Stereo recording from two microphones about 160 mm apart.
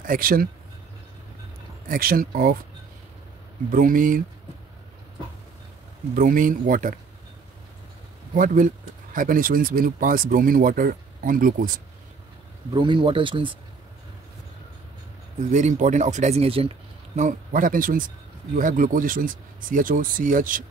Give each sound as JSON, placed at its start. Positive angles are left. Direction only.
{"t": 0.0, "sound": "speech", "side_deg": -60}
{"t": 1.9, "sound": "speech", "side_deg": -65}
{"t": 3.7, "sound": "speech", "side_deg": -60}
{"t": 6.1, "sound": "speech", "side_deg": -55}
{"t": 8.4, "sound": "speech", "side_deg": -55}
{"t": 12.7, "sound": "speech", "side_deg": -30}
{"t": 15.5, "sound": "speech", "side_deg": -50}